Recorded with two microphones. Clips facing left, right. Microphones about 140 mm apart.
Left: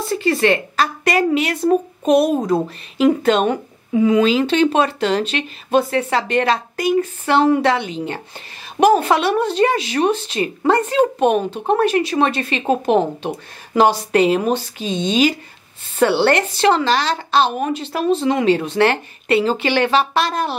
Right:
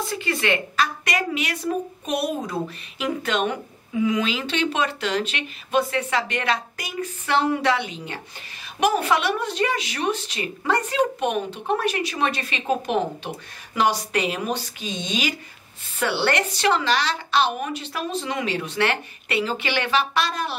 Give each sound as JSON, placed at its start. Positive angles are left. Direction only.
{"t": 0.1, "sound": "a woman's voice", "side_deg": 35}